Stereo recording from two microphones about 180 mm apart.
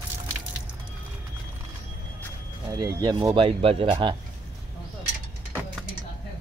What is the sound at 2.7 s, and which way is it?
Speech, 20° right (ahead or behind).